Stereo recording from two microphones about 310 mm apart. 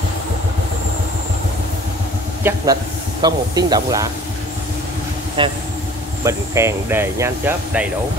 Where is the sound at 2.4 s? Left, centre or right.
Centre.